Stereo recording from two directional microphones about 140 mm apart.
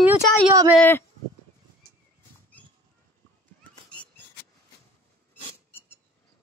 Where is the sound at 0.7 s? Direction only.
15° left (ahead or behind).